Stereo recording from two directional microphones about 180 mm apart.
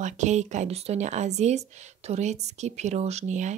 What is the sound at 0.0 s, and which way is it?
A woman's voice, 40° right (ahead or behind).